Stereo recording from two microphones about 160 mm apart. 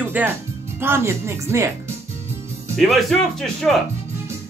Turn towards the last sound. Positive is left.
turn(degrees=0)  # may be behind; listen again after turning